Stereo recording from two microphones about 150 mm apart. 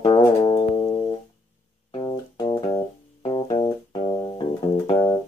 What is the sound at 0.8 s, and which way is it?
Music, 40° left (ahead or behind).